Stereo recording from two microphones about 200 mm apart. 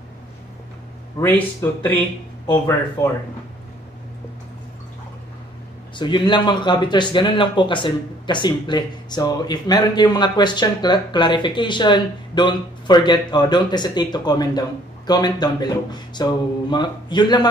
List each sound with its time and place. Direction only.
1.1 s speech: 10° left (ahead or behind)
5.9 s speech: 25° left (ahead or behind)